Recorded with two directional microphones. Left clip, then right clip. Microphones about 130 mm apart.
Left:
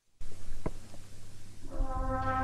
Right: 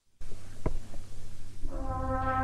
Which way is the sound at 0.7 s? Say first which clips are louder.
Right 3 dB; 40° right (ahead or behind).